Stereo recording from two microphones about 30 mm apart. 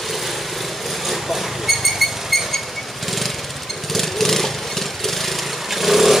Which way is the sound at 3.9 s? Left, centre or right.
Centre.